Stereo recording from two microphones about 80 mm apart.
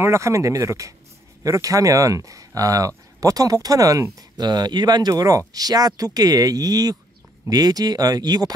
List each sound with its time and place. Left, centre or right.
0.0 s speech: right
4.4 s speech: right
5.1 s speech: right